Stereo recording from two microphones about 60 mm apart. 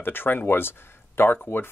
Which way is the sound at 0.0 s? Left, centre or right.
Left.